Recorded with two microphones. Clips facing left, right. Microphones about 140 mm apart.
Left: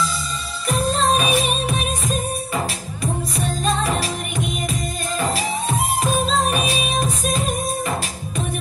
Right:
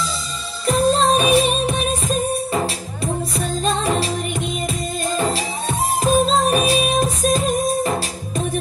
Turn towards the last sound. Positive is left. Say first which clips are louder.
# right 4 dB
turn(degrees=-35)  # may be behind; listen again after turning